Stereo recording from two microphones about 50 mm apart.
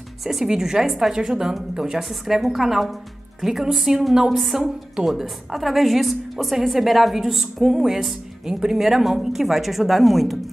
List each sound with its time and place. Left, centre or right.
0.2 s a woman's voice: centre